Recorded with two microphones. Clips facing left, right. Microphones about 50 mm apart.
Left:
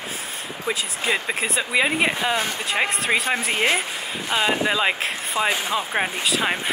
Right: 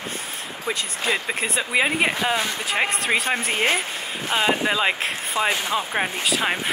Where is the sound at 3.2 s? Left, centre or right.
Left.